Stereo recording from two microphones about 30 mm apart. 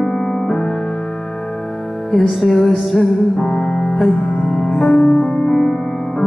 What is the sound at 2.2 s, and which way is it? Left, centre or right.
Music, centre.